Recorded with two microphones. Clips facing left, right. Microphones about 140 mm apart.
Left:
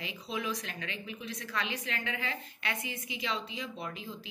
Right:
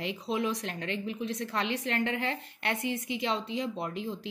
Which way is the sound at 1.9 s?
55° right (ahead or behind).